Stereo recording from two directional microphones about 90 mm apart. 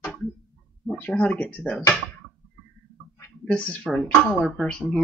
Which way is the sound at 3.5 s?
15° left (ahead or behind).